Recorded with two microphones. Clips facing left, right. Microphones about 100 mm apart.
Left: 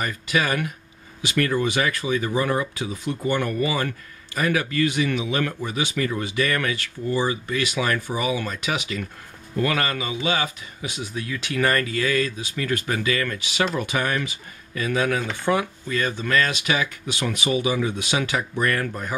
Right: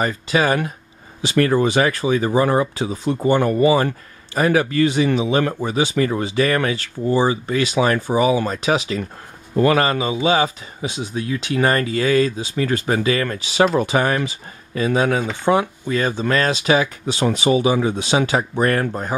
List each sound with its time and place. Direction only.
0.0 s speech: 30° right (ahead or behind)